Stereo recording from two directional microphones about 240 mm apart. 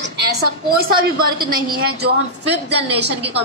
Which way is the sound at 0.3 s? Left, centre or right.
Right.